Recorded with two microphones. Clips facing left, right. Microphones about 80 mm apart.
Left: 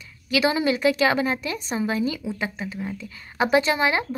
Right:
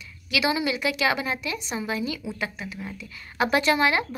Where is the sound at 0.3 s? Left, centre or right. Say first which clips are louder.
Left 4 dB; left.